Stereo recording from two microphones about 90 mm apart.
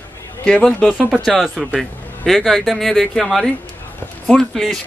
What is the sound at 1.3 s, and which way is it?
Speech, 5° right (ahead or behind).